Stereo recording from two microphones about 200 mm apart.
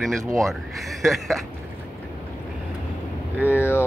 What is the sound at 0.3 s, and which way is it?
Speech, centre (ahead or behind).